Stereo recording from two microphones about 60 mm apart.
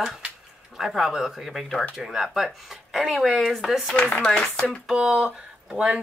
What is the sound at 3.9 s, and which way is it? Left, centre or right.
Chopping, left.